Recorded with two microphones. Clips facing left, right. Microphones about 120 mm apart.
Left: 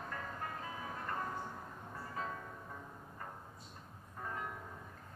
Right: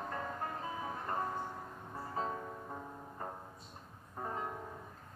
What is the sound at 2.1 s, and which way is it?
Music, 30° right (ahead or behind).